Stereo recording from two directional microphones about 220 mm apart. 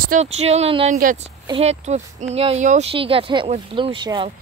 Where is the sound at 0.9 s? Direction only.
40° right (ahead or behind); by 4.3 s 20° right (ahead or behind).